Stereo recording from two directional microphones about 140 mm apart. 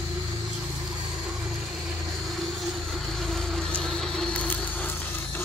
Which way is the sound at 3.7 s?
5° left (ahead or behind).